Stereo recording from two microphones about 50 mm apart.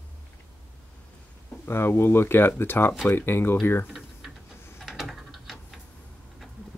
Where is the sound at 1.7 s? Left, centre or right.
Left.